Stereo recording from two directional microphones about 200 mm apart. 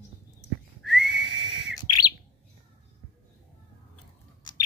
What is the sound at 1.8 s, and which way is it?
Bird, 20° left (ahead or behind).